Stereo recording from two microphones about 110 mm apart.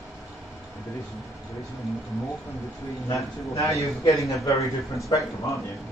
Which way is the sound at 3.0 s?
25° left (ahead or behind).